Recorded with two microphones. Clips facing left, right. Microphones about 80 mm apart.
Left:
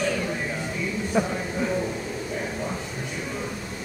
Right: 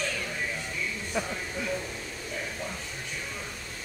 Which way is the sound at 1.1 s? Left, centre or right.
Left.